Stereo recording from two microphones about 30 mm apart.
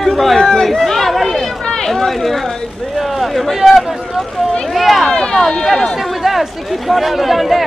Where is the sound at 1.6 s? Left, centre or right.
Left.